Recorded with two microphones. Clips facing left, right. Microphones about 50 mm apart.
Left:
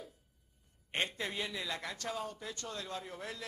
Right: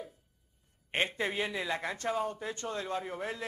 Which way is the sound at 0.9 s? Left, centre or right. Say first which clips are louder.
Right 5 dB; right.